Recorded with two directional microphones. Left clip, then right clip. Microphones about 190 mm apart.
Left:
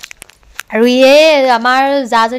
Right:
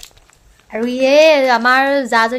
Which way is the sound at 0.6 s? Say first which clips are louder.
Left 10 dB; 65° left (ahead or behind).